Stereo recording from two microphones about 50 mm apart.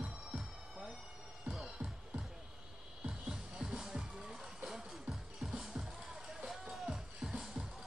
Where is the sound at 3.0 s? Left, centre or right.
Centre.